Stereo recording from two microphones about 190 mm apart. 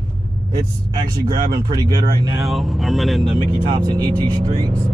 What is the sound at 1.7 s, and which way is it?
Speech, 20° right (ahead or behind).